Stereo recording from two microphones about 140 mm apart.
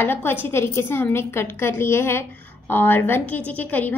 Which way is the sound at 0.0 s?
15° left (ahead or behind).